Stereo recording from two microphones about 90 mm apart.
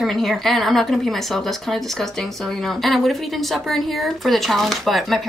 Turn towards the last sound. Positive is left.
turn(degrees=0)  # may be behind; listen again after turning